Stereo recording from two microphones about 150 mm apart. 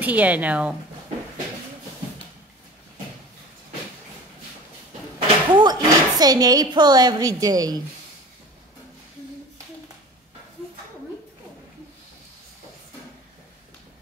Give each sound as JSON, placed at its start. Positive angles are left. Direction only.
{"t": 0.0, "sound": "a woman's voice", "side_deg": -10}
{"t": 5.5, "sound": "speech", "side_deg": -30}